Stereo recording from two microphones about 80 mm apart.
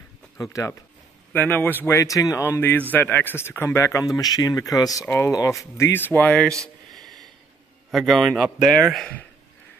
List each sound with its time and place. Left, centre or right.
0.4 s speech: left
1.3 s a man's voice: left
2.0 s speech: left
2.9 s speech: left
4.2 s speech: left
5.0 s speech: left
5.9 s a man's voice: left
6.9 s snort: centre
7.9 s a man's voice: centre